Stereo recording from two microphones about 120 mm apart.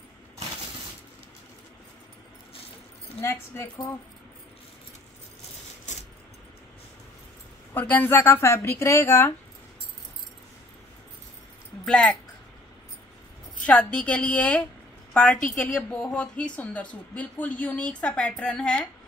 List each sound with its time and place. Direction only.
3.2 s speech: 20° left (ahead or behind)
7.7 s speech: 15° left (ahead or behind)
11.8 s speech: 5° left (ahead or behind)
13.7 s a woman's voice: 10° left (ahead or behind)